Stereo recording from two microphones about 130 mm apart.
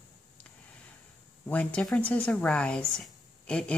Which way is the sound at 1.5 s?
10° left (ahead or behind).